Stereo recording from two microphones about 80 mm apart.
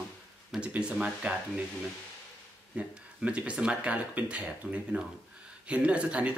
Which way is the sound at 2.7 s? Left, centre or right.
Centre.